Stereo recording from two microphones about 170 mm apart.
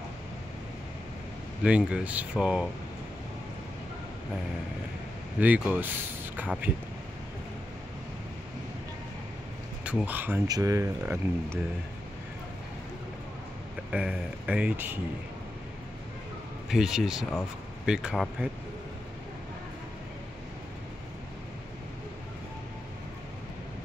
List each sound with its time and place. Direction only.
1.6 s speech: 5° right (ahead or behind)
5.4 s speech: 10° right (ahead or behind)
9.8 s speech: 10° right (ahead or behind)
10.4 s speech: 20° right (ahead or behind)
13.9 s speech: 5° right (ahead or behind)
16.6 s speech: 5° right (ahead or behind)